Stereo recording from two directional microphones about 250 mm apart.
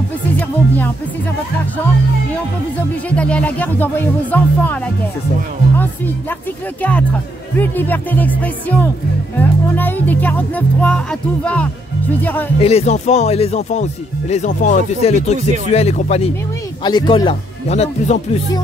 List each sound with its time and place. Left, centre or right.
0.4 s music: centre
3.1 s speech: centre
6.8 s speech: centre
12.5 s speech: left